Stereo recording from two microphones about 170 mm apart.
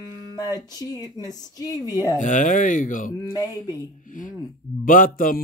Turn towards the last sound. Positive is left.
turn(degrees=55)  # may be behind; listen again after turning